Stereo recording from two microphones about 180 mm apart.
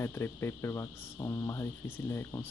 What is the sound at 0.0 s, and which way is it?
Speech, 15° left (ahead or behind).